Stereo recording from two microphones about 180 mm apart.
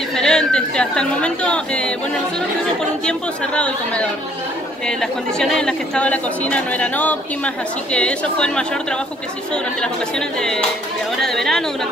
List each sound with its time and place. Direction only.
0.1 s speech: 5° left (ahead or behind)
3.1 s speech: 5° left (ahead or behind)
9.8 s speech: 5° left (ahead or behind)